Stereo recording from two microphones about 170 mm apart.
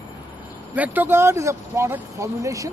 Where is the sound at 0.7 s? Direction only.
10° right (ahead or behind).